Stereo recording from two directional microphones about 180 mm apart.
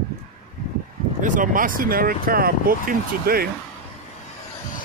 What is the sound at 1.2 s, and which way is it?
Speech, 45° right (ahead or behind).